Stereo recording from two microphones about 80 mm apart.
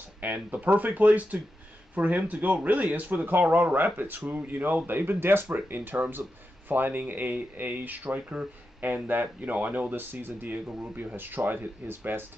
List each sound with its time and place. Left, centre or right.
0.2 s speech: right